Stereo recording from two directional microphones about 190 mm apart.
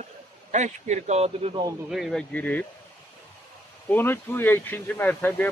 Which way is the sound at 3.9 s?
10° left (ahead or behind).